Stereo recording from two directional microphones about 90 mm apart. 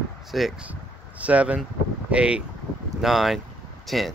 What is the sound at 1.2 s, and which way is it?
Speech, 15° right (ahead or behind).